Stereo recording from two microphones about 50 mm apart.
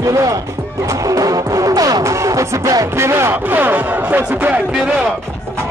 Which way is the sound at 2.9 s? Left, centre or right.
Right.